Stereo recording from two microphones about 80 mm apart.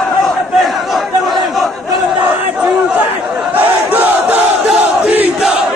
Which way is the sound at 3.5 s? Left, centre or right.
Right.